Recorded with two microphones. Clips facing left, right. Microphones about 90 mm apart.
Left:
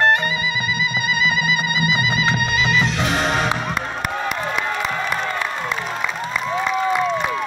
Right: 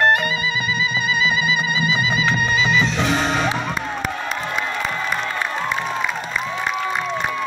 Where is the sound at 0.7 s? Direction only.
55° left (ahead or behind).